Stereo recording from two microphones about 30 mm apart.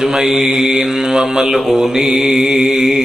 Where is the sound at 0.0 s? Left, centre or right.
Centre.